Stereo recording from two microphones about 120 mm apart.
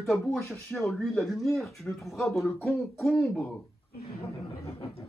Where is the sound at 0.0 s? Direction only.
Centre (ahead or behind).